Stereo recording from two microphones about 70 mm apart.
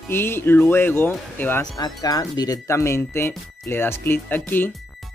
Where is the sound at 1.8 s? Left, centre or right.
Left.